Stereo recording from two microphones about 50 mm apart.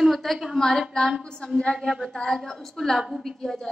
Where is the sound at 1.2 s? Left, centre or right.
Centre.